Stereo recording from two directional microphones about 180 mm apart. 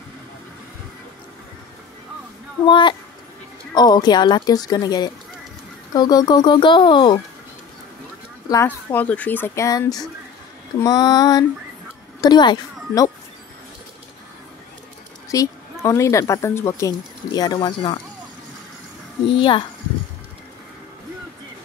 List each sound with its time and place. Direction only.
2.7 s a woman's voice: 25° left (ahead or behind)
8.5 s a woman's voice: 15° left (ahead or behind)
15.3 s speech: 20° left (ahead or behind)
19.3 s a woman's voice: 30° left (ahead or behind)